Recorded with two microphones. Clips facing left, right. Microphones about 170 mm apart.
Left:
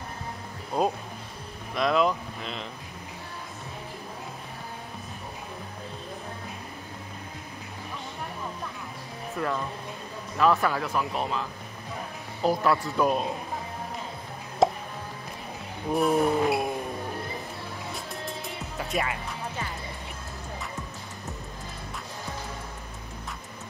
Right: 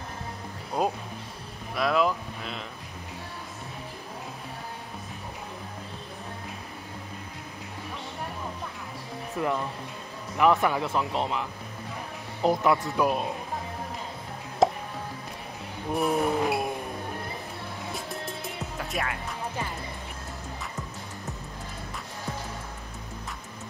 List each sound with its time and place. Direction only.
0.8 s speech: centre (ahead or behind)
1.8 s vehicle: 5° right (ahead or behind)
9.4 s speech: 15° right (ahead or behind)
12.9 s speech: 5° right (ahead or behind)
14.6 s music: centre (ahead or behind)
15.9 s speech: centre (ahead or behind)
17.9 s music: centre (ahead or behind)